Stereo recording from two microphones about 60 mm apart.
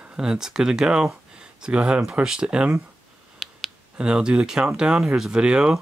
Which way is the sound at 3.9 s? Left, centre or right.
Centre.